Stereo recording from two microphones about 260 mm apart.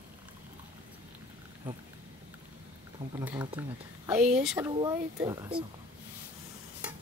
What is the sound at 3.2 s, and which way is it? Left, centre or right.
Speech, centre.